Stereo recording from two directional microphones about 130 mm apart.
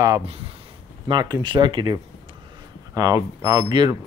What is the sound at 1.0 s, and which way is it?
Speech, 35° right (ahead or behind).